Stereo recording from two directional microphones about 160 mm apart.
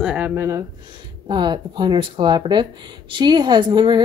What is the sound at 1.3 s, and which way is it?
Speech, 30° right (ahead or behind).